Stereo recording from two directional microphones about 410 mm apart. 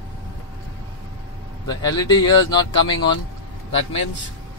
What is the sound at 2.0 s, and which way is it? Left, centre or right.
Speech, centre.